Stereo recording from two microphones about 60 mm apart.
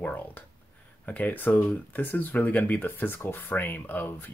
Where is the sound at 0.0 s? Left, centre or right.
Left.